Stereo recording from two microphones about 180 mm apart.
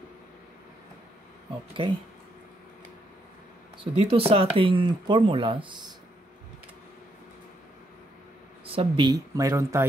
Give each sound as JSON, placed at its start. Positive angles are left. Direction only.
{"t": 3.9, "sound": "speech", "side_deg": -30}
{"t": 8.7, "sound": "speech", "side_deg": -25}